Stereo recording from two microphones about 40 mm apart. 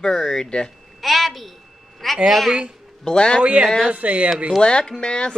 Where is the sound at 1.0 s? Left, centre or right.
Centre.